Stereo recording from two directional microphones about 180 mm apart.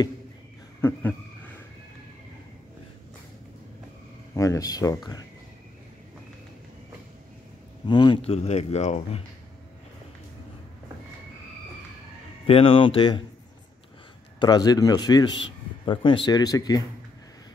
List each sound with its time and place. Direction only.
0.7 s a sound: 10° left (ahead or behind)
4.3 s speech: 15° left (ahead or behind)
7.9 s speech: 25° left (ahead or behind)
12.4 s speech: 30° left (ahead or behind)
14.4 s speech: 20° left (ahead or behind)